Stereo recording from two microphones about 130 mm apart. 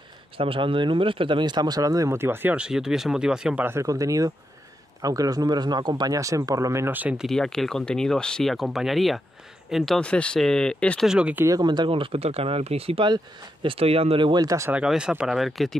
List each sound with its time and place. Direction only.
0.4 s speech: 45° right (ahead or behind); by 3.6 s 5° right (ahead or behind)
3.6 s speech: 25° right (ahead or behind)
7.2 s speech: 5° left (ahead or behind)
11.1 s speech: 10° right (ahead or behind)
11.4 s speech: 30° right (ahead or behind)
14.7 s speech: 5° right (ahead or behind)